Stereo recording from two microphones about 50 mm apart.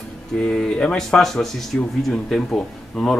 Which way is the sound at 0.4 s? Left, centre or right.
Centre.